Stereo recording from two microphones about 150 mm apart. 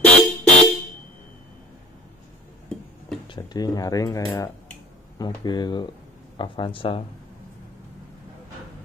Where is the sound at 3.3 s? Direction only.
25° left (ahead or behind).